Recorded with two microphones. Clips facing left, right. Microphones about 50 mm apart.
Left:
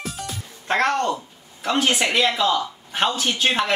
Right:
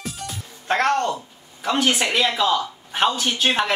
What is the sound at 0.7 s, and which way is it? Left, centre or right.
Speech, left.